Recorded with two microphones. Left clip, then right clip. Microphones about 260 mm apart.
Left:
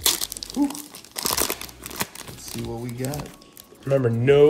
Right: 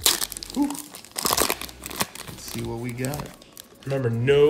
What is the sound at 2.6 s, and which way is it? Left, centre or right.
Speech, right.